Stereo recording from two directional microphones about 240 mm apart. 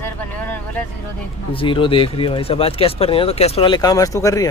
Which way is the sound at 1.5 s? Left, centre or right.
Left.